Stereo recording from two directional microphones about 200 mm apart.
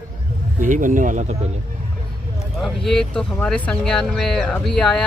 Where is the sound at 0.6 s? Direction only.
40° right (ahead or behind).